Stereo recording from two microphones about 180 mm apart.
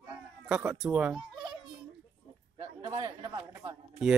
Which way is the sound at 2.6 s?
25° right (ahead or behind).